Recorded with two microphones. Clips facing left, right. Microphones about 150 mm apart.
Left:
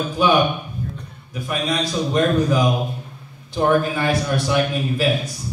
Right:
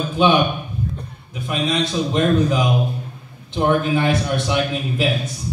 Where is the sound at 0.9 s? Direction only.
25° right (ahead or behind).